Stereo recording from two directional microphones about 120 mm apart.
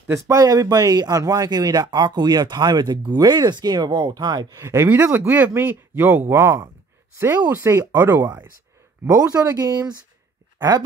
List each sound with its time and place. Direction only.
0.1 s speech: 25° right (ahead or behind)